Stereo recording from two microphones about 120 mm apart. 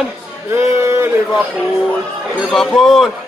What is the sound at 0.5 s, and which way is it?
Speech, 25° right (ahead or behind).